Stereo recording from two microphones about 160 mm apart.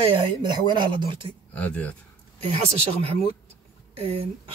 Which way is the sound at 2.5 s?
35° right (ahead or behind).